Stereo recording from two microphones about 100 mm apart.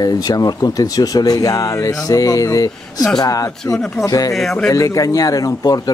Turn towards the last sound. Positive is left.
turn(degrees=40)  # may be behind; listen again after turning